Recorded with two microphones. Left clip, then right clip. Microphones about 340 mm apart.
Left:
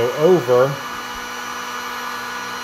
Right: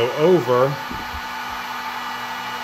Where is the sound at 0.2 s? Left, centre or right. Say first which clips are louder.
Left 2 dB; centre.